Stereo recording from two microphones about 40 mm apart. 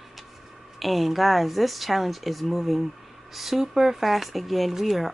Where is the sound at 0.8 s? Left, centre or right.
Centre.